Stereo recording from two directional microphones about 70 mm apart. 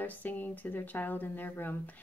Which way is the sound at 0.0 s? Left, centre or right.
Left.